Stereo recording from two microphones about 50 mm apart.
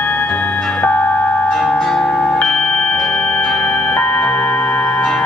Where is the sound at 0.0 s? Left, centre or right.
Left.